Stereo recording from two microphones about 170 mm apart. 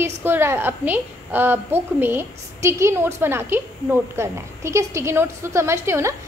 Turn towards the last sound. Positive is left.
turn(degrees=-15)  # may be behind; listen again after turning